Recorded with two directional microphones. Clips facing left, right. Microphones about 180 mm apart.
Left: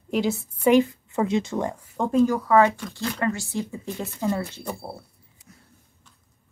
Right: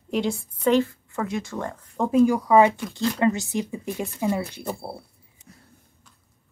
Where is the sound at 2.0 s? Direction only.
5° right (ahead or behind).